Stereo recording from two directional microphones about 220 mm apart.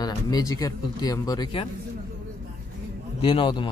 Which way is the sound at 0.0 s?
15° left (ahead or behind).